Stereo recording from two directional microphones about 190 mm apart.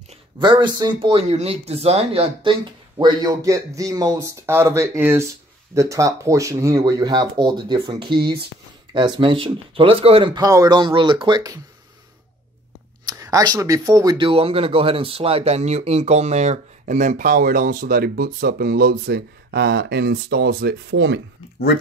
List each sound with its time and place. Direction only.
0.4 s speech: 25° right (ahead or behind)
13.0 s speech: 20° right (ahead or behind); by 21.2 s 65° right (ahead or behind)